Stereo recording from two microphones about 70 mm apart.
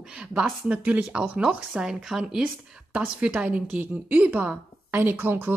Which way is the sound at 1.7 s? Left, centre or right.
Centre.